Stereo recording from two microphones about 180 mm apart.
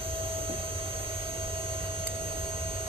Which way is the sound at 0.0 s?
30° right (ahead or behind).